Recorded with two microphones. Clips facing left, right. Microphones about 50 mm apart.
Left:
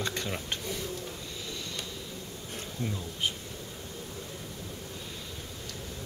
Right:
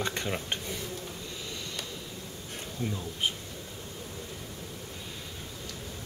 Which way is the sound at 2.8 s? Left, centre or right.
Centre.